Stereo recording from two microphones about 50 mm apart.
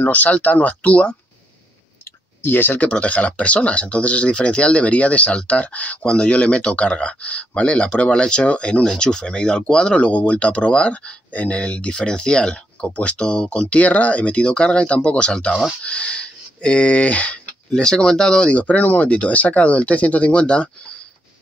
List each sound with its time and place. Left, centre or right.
0.0 s speech: left
2.4 s speech: left
2.9 s speech: left
11.9 s speech: centre
17.7 s speech: centre
18.5 s speech: left